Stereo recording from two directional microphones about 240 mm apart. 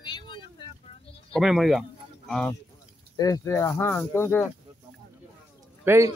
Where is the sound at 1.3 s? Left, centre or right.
Centre.